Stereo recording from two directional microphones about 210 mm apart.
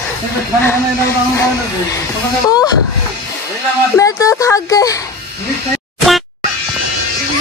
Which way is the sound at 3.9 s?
15° left (ahead or behind).